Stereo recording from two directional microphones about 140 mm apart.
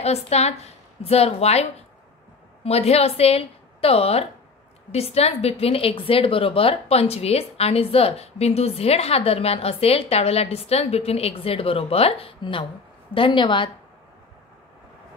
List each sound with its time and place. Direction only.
0.0 s a woman's voice: 50° left (ahead or behind)